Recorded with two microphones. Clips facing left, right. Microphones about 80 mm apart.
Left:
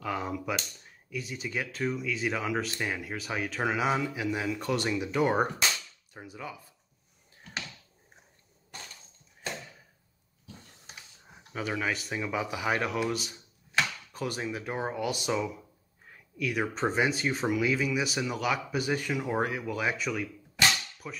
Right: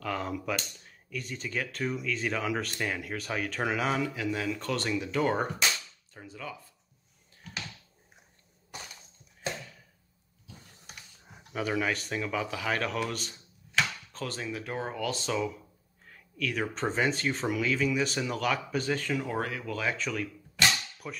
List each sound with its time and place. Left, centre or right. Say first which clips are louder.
0.0 s speech: even; centre
11.2 s speech: right 2 dB; centre